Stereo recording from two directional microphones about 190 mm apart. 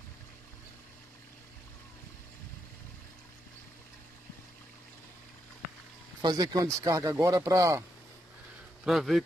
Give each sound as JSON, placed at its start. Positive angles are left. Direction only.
{"t": 6.2, "sound": "speech", "side_deg": -20}
{"t": 8.8, "sound": "speech", "side_deg": 0}